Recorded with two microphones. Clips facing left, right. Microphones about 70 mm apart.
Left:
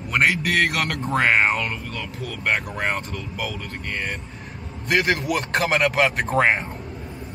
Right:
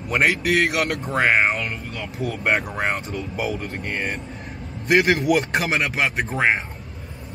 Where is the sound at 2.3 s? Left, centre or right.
Centre.